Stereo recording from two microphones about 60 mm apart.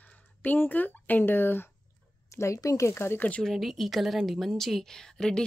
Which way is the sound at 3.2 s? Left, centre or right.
Left.